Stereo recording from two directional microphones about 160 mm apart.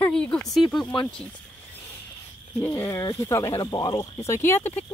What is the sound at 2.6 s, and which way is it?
Speech, 15° left (ahead or behind).